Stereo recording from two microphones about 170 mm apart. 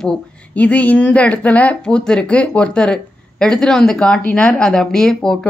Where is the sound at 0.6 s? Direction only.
10° left (ahead or behind).